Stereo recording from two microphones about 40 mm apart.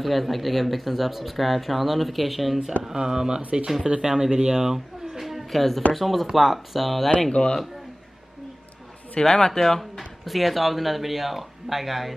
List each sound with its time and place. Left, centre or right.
0.0 s speech: centre
2.8 s speech: centre
4.1 s speech: centre
5.2 s a woman's voice: centre
7.4 s a man's voice: left
9.2 s speech: centre